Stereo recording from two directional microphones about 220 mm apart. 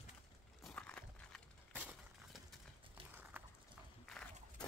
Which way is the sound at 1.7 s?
5° right (ahead or behind).